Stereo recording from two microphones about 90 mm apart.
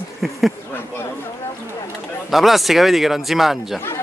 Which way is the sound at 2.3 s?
Centre (ahead or behind).